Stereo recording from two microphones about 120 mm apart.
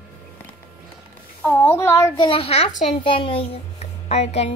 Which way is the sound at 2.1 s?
50° left (ahead or behind).